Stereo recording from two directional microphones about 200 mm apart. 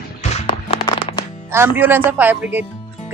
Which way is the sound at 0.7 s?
25° left (ahead or behind).